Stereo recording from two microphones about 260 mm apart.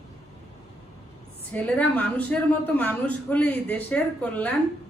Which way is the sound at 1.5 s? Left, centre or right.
Centre.